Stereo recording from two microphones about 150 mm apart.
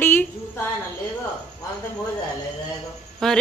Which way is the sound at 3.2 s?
Centre (ahead or behind).